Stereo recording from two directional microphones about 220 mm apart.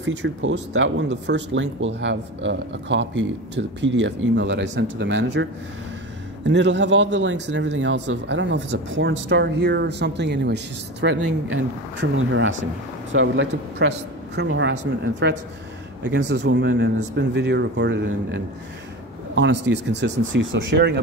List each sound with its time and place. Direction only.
0.0 s speech: 55° right (ahead or behind)